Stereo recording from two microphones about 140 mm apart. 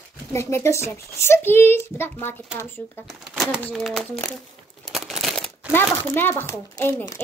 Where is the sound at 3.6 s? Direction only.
5° left (ahead or behind).